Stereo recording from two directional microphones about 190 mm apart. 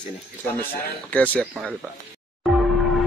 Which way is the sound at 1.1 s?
10° left (ahead or behind).